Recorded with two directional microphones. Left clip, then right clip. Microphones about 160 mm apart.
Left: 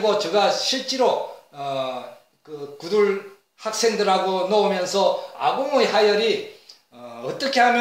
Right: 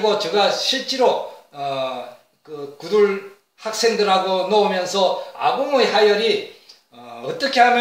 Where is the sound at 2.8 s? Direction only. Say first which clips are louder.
Right 3 dB; 20° left (ahead or behind).